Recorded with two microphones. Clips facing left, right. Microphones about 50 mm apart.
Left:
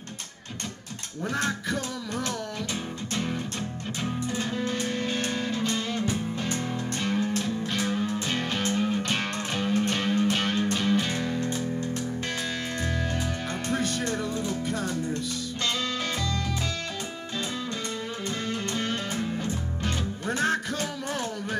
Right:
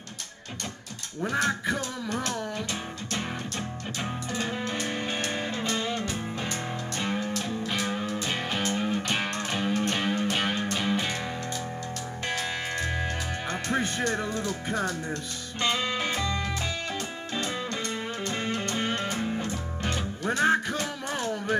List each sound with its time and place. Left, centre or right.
1.2 s music: centre
4.4 s music: centre
7.0 s music: centre
13.5 s music: right
15.6 s music: centre
18.4 s music: right